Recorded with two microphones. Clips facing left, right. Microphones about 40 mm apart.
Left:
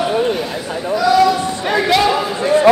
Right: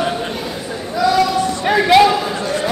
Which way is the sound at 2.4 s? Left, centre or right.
Left.